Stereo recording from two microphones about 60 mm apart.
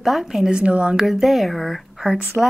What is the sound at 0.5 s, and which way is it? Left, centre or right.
Speech, centre.